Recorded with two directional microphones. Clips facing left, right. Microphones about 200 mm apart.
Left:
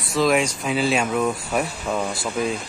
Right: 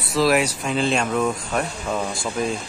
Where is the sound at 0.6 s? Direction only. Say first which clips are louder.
Even; 5° left (ahead or behind).